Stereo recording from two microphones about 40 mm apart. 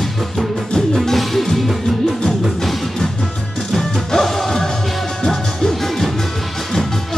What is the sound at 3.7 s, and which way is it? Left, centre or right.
Music, centre.